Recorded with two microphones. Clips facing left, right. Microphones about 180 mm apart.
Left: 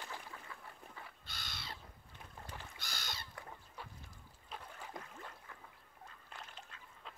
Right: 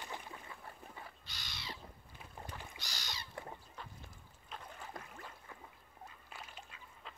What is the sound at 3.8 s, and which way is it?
Fowl, 10° left (ahead or behind).